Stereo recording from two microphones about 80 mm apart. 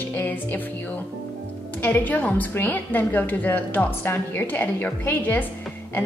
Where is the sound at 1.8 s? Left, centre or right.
Left.